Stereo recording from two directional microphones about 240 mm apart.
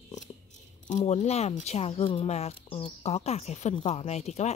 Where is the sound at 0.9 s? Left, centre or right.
Left.